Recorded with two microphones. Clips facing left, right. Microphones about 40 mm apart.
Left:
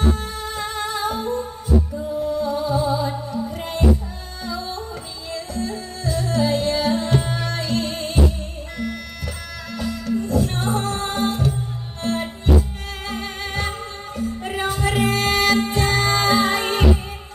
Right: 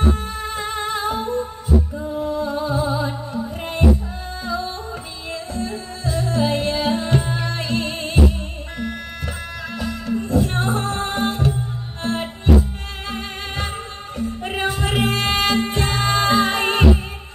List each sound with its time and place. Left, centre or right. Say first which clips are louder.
0.0 s music: right 1 dB; right
5.3 s music: even; right
9.8 s music: left 1 dB; right